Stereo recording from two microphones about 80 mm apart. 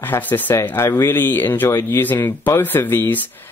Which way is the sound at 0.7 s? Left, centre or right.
Left.